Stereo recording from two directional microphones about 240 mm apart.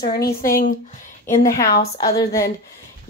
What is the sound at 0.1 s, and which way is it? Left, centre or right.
Speech, left.